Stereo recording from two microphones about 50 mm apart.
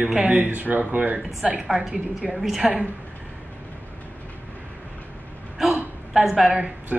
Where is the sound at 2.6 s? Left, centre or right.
Centre.